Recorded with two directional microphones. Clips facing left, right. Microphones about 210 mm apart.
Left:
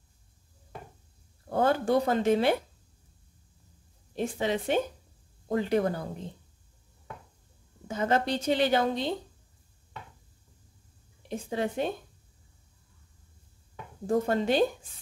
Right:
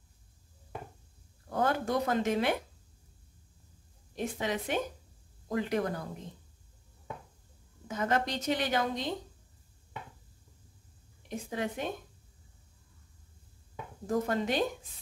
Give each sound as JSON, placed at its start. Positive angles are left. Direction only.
{"t": 1.5, "sound": "a woman's voice", "side_deg": 30}
{"t": 4.1, "sound": "a woman's voice", "side_deg": 30}
{"t": 7.9, "sound": "a woman's voice", "side_deg": 30}
{"t": 11.2, "sound": "a woman's voice", "side_deg": 30}
{"t": 14.0, "sound": "a woman's voice", "side_deg": 30}